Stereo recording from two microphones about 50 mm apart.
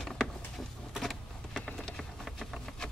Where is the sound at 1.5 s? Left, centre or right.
Centre.